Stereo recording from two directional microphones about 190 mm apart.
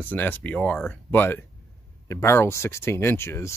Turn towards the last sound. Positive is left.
turn(degrees=15)  # may be behind; listen again after turning